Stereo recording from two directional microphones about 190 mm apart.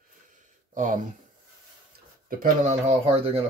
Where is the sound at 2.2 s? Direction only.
40° right (ahead or behind).